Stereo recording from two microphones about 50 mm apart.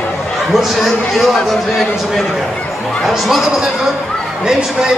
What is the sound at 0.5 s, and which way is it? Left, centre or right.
Speech, centre.